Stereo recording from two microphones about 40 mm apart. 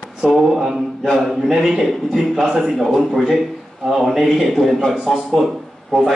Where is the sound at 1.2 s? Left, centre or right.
Centre.